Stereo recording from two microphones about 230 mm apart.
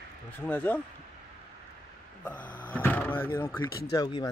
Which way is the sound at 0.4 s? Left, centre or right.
Centre.